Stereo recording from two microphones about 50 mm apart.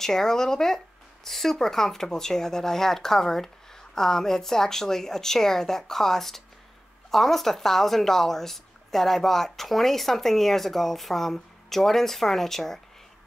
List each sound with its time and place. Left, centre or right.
0.0 s speech: centre